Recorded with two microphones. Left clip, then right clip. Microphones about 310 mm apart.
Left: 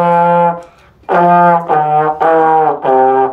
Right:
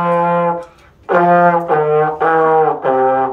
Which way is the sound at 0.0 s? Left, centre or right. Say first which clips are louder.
Left 5 dB; left.